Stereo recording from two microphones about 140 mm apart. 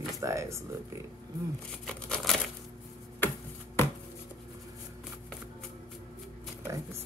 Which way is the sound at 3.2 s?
15° left (ahead or behind).